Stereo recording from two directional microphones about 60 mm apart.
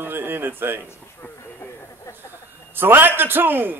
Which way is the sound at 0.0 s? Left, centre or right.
Right.